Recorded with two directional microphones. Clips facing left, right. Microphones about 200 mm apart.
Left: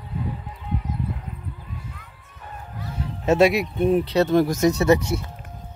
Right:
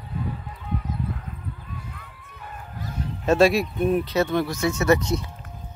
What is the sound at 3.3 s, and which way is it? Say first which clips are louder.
Speech: left 1 dB; 20° left (ahead or behind).